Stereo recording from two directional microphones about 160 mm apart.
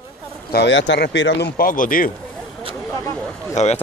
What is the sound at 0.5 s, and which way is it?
Speech, 85° left.